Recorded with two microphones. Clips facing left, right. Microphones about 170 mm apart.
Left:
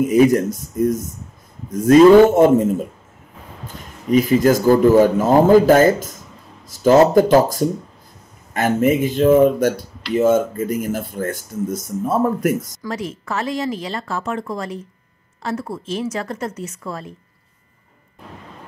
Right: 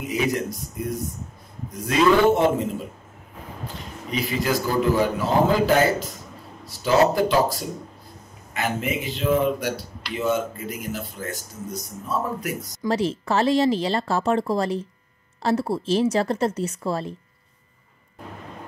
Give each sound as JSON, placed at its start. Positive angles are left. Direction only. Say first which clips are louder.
{"t": 0.0, "sound": "speech", "louder": "left 11 dB", "side_deg": 50}
{"t": 12.8, "sound": "a woman's voice", "louder": "right 4 dB", "side_deg": -30}